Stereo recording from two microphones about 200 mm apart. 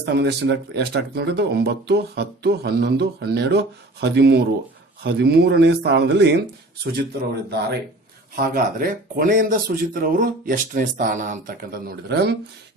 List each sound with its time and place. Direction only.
0.0 s speech: 55° right (ahead or behind)
8.4 s speech: 45° right (ahead or behind)